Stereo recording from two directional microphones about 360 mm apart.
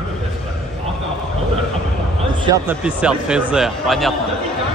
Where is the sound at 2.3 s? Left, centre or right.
Centre.